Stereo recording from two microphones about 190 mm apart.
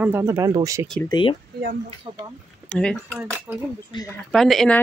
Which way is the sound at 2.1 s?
30° right (ahead or behind).